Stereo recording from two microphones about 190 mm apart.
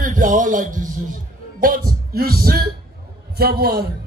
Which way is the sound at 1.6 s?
50° right (ahead or behind).